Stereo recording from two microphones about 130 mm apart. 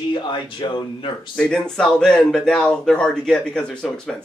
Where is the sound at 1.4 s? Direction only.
5° left (ahead or behind).